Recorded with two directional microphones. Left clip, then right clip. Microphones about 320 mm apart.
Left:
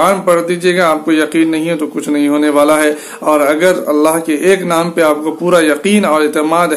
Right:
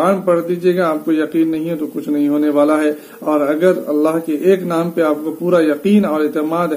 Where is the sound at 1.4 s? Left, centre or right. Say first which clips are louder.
Left 4 dB; centre.